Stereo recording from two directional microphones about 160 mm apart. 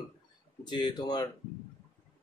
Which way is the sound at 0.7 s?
25° left (ahead or behind).